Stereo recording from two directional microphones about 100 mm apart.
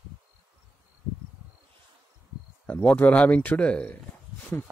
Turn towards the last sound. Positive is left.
turn(degrees=10)  # may be behind; listen again after turning